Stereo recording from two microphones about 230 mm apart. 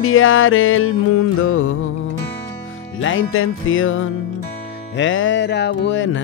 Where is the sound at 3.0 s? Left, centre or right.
Left.